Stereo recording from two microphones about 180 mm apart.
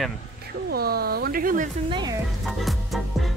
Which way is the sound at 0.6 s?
60° right (ahead or behind).